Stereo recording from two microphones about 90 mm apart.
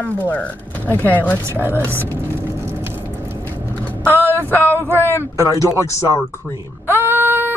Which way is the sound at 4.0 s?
25° right (ahead or behind).